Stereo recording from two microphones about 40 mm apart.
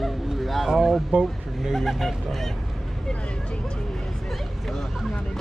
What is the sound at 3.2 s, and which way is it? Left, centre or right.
Speech, left.